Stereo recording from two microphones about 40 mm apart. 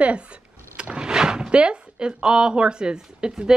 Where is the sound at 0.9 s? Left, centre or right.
Centre.